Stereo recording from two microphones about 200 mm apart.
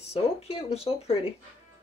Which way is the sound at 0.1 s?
30° left (ahead or behind).